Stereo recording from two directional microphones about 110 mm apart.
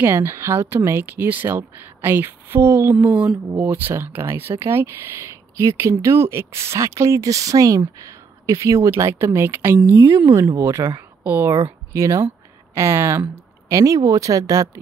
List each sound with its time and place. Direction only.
0.0 s speech: 25° right (ahead or behind)
3.0 s speech: 10° right (ahead or behind); by 14.7 s 30° right (ahead or behind)